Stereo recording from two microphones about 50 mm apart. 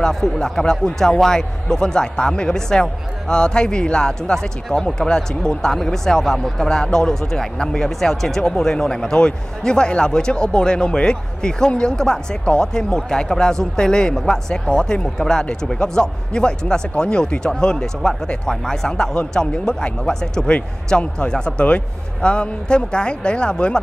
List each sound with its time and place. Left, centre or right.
0.0 s speech: centre